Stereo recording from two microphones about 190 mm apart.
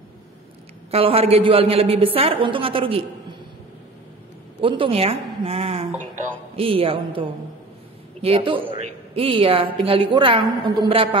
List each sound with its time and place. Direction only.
0.9 s a woman's voice: 30° right (ahead or behind)
4.6 s a woman's voice: 25° right (ahead or behind)